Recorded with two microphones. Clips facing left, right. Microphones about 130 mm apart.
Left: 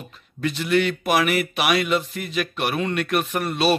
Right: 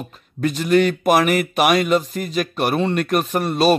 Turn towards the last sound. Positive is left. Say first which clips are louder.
# right 4 dB
turn(degrees=-40)  # may be behind; listen again after turning